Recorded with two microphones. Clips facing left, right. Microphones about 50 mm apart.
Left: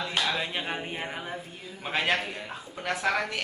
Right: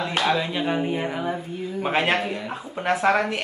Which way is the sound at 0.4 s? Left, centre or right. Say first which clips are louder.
Right 7 dB; centre.